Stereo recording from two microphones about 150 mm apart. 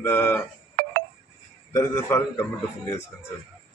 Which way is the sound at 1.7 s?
15° left (ahead or behind).